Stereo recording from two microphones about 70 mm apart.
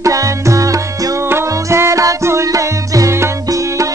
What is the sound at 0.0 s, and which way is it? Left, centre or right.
Music, right.